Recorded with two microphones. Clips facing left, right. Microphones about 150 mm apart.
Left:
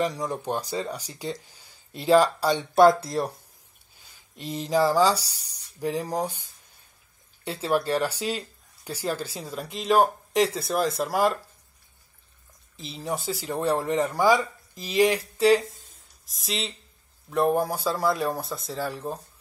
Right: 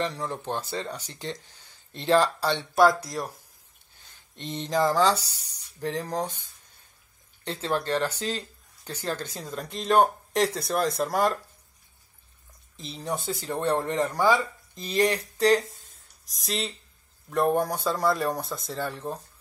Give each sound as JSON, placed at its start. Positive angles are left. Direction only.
{"t": 0.0, "sound": "speech", "side_deg": 10}
{"t": 2.7, "sound": "speech", "side_deg": 25}
{"t": 4.0, "sound": "speech", "side_deg": 10}
{"t": 5.1, "sound": "speech", "side_deg": 35}
{"t": 5.8, "sound": "speech", "side_deg": 10}
{"t": 7.4, "sound": "speech", "side_deg": 10}
{"t": 12.7, "sound": "speech", "side_deg": 0}